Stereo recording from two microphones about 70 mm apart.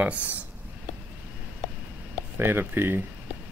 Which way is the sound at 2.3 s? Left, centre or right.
Right.